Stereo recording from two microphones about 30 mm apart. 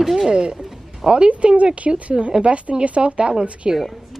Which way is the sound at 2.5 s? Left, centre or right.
Right.